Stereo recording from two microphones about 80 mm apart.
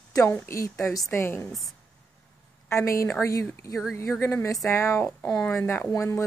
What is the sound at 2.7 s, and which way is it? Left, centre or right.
Speech, left.